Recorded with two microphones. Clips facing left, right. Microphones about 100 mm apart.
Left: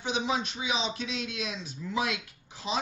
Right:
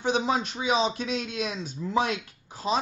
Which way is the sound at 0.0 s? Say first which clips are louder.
Right 5 dB; 40° right (ahead or behind).